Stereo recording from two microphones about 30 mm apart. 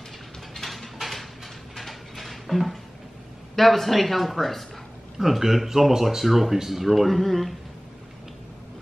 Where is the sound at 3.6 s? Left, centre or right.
Centre.